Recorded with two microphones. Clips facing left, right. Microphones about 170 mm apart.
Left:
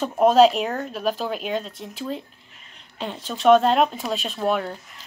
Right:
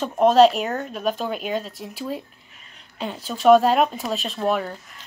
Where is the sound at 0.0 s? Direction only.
Centre (ahead or behind).